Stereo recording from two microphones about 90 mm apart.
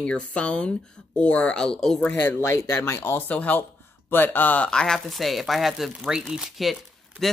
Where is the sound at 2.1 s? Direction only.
25° left (ahead or behind).